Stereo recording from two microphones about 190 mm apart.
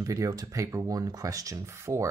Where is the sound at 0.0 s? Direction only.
15° right (ahead or behind).